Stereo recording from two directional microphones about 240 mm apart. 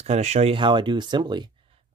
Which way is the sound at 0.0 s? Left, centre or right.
Right.